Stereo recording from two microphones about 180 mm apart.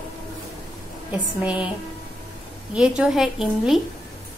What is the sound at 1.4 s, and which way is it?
Speech, 5° right (ahead or behind).